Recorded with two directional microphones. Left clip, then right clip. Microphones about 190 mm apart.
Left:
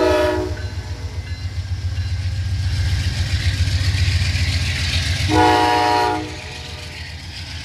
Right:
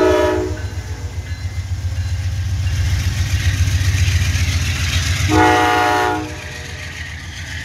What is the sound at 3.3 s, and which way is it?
Vehicle, 5° left (ahead or behind).